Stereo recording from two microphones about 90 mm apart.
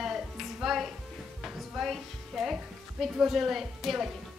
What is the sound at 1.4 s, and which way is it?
Music, centre (ahead or behind).